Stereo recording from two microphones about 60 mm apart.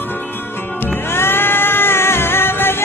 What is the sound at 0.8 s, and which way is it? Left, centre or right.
Music, left.